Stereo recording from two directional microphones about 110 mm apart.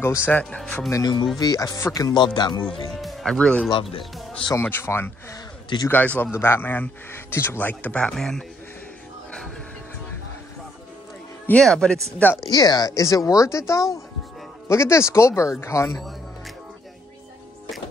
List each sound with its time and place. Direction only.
0.0 s speech: 20° left (ahead or behind)
0.8 s speech: 35° left (ahead or behind)
2.2 s speech: 45° left (ahead or behind)
3.0 s speech: centre (ahead or behind)
4.6 s speech: 20° left (ahead or behind); by 8.5 s 5° left (ahead or behind)
11.6 s speech: 5° left (ahead or behind)
12.4 s speech: 35° left (ahead or behind)